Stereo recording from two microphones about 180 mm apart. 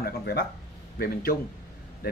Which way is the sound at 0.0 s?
60° left (ahead or behind).